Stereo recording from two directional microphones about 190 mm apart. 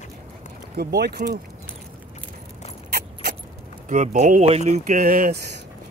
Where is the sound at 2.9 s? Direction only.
55° right (ahead or behind).